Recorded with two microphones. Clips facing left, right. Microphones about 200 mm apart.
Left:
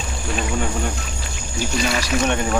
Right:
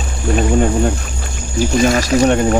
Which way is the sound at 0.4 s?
40° right (ahead or behind).